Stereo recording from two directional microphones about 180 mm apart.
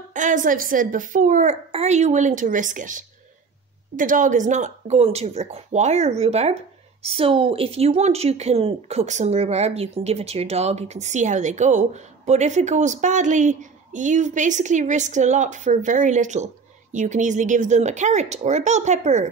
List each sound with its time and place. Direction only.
0.1 s a child's voice: 45° right (ahead or behind)